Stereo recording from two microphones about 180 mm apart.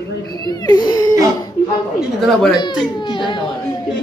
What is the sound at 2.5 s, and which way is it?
Speech, 25° left (ahead or behind).